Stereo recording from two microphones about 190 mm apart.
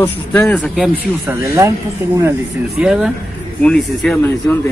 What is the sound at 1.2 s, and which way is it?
Speech, 15° right (ahead or behind).